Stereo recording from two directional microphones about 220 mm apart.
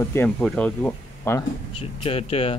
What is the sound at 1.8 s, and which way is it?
Speech, 25° left (ahead or behind).